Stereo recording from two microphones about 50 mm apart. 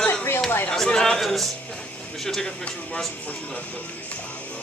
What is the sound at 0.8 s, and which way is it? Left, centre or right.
Speech, centre.